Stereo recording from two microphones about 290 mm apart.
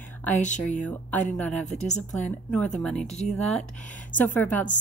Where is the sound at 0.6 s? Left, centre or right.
Centre.